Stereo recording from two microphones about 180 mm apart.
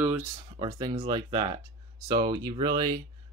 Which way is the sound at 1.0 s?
25° right (ahead or behind).